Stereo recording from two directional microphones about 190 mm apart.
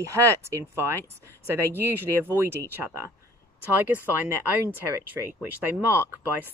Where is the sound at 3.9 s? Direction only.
10° right (ahead or behind).